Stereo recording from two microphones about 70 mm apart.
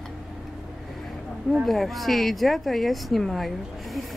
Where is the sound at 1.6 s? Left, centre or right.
Centre.